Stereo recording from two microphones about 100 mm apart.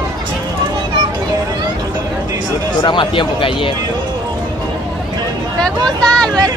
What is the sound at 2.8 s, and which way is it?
Speech, 55° left (ahead or behind).